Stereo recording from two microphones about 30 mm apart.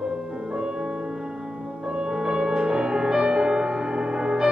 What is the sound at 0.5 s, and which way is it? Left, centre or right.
Music, right.